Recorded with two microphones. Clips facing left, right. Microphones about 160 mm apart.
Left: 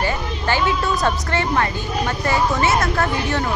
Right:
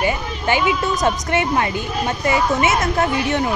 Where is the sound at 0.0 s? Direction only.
15° right (ahead or behind).